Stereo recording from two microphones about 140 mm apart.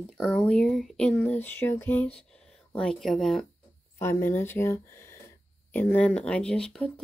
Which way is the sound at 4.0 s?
20° left (ahead or behind).